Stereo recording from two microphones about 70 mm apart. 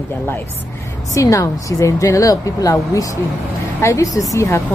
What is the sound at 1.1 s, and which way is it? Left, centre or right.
A woman's voice, left.